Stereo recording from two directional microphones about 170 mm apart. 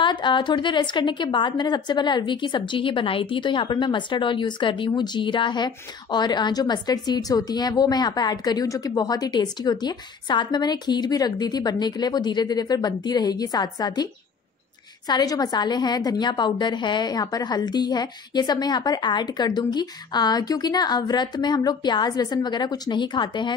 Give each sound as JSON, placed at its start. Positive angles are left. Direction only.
{"t": 0.0, "sound": "a woman's voice", "side_deg": 25}
{"t": 15.0, "sound": "a woman's voice", "side_deg": 25}